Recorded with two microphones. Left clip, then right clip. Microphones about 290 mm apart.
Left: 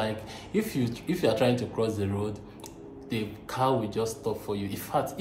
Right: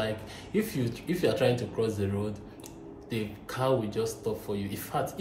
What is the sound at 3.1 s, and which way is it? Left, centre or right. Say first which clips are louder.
A man's voice: left 2 dB; centre.